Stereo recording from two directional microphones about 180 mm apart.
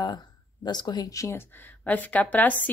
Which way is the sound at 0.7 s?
25° left (ahead or behind).